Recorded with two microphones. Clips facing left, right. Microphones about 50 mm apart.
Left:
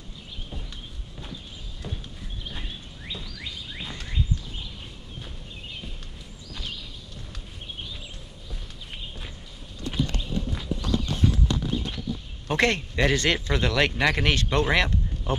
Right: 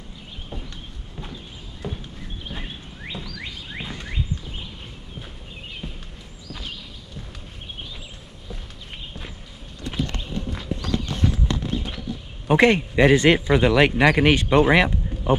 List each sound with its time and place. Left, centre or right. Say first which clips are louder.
1.8 s a sound: right 6 dB; centre
2.6 s bird: right 4 dB; right
4.1 s horse: right 1 dB; right
5.8 s a sound: right 5 dB; centre
11.2 s clip-clop: right 1 dB; centre
12.4 s speech: right 7 dB; centre